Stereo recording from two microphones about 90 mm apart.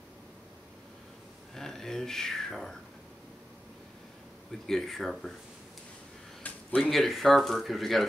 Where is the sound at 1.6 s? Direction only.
5° left (ahead or behind).